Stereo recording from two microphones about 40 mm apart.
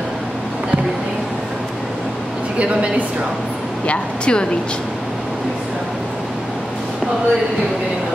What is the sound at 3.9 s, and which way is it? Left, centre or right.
Speech, left.